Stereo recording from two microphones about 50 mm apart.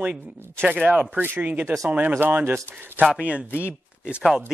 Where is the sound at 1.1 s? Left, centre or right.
Right.